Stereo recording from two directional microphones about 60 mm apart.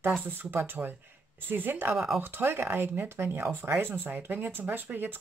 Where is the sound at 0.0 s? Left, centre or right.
Right.